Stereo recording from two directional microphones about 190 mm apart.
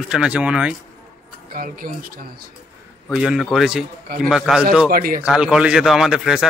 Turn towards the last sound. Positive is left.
turn(degrees=0)  # may be behind; listen again after turning